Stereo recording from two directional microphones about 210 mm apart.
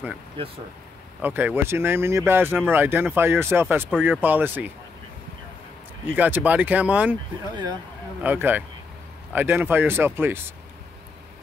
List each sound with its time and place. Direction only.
0.4 s speech: 25° right (ahead or behind)
1.2 s speech: 10° right (ahead or behind)
6.0 s speech: 5° right (ahead or behind)
8.2 s speech: 10° right (ahead or behind)